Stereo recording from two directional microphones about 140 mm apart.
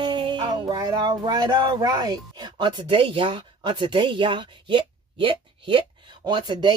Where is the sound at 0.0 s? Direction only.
35° right (ahead or behind).